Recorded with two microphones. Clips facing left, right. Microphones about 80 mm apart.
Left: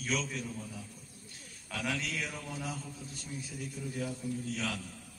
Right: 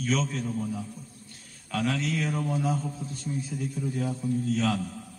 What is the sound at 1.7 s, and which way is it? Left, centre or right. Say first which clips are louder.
A man's voice: right 8 dB; right.